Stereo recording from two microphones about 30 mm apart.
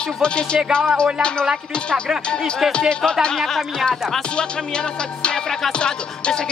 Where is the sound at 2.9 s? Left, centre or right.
Left.